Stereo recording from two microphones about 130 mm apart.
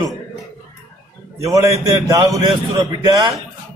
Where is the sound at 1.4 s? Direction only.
25° right (ahead or behind).